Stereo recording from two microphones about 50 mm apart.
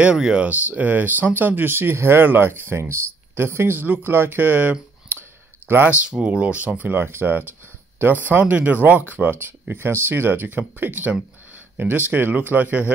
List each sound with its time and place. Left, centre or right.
0.1 s speech: centre
0.5 s speech: right
6.0 s speech: right
7.1 s speech: right